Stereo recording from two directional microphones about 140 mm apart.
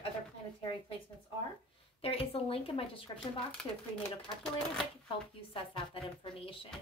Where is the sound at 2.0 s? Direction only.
45° left (ahead or behind).